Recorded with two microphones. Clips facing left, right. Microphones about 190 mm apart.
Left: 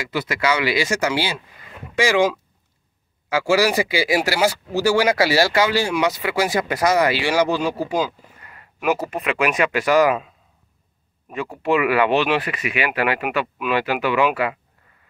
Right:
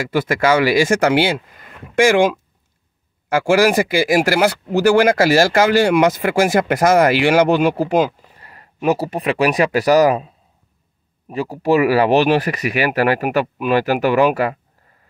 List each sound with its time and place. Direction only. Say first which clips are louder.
0.1 s speech: right 6 dB; 50° right (ahead or behind)
8.4 s speech: right 10 dB; 35° right (ahead or behind)